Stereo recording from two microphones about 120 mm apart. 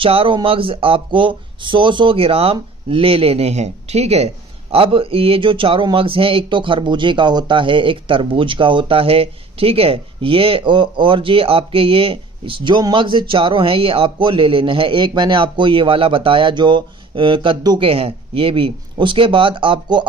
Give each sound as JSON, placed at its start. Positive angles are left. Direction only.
{"t": 0.0, "sound": "speech", "side_deg": -50}